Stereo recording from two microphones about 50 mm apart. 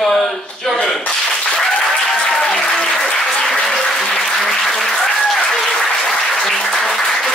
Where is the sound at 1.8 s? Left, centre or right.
Centre.